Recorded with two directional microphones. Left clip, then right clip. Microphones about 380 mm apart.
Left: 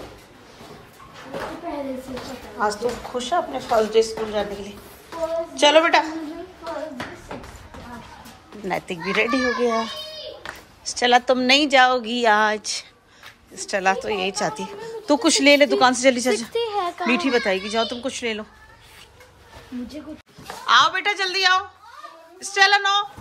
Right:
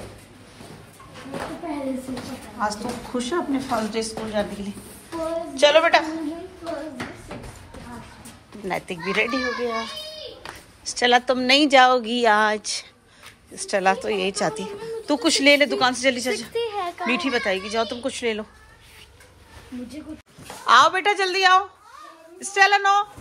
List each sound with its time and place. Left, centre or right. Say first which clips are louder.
2.6 s a woman's voice: left 4 dB; centre
8.6 s a woman's voice: left 1 dB; centre
11.0 s a woman's voice: left 1 dB; centre
16.5 s a sound: left 2 dB; left
17.1 s a woman's voice: left 2 dB; centre
20.6 s a woman's voice: right 1 dB; centre